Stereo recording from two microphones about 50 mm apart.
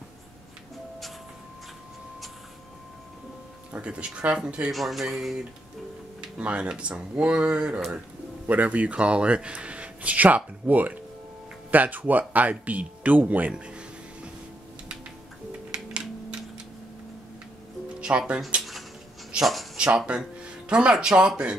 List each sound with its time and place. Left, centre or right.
3.8 s speech: right
4.6 s speech: centre
6.3 s speech: right
15.7 s computer keyboard: right
18.0 s speech: right
19.3 s a sound: centre
19.8 s speech: right